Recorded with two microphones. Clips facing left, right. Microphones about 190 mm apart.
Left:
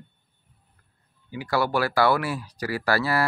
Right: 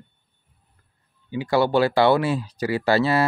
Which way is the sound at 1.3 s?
25° right (ahead or behind).